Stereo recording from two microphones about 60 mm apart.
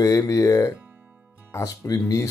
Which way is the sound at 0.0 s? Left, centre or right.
Left.